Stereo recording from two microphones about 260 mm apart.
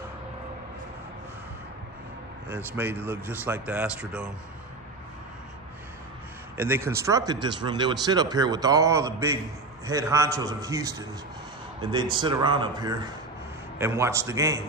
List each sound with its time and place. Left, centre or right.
2.5 s speech: centre
6.5 s speech: centre
12.2 s speech: centre